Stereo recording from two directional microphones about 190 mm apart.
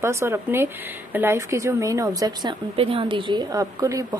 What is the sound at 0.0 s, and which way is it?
A woman's voice, 15° right (ahead or behind).